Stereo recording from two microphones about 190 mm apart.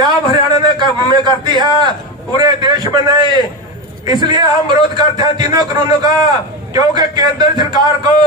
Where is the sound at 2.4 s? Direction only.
20° right (ahead or behind).